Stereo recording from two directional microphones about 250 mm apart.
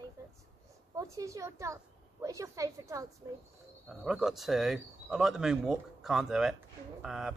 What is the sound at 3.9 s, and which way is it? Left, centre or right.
Speech, centre.